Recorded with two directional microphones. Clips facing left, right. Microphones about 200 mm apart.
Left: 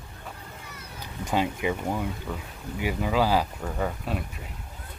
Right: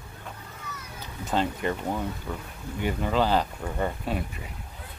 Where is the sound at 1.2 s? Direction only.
10° left (ahead or behind).